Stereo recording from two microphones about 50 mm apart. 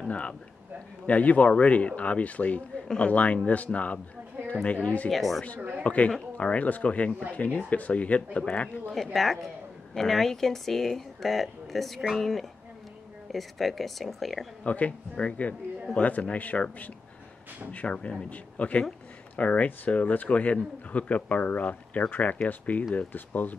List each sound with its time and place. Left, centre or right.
0.1 s speech: left
5.1 s speech: centre
5.9 s speech: left
8.9 s speech: centre
14.6 s speech: left